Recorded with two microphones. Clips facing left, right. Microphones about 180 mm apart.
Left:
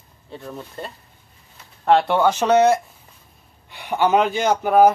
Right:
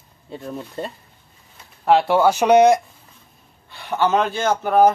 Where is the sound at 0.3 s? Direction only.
15° right (ahead or behind).